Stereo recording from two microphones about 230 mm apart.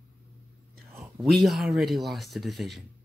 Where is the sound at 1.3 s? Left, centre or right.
Centre.